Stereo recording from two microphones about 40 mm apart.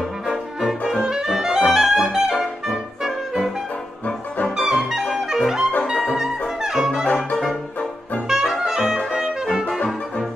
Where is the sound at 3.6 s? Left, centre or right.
Left.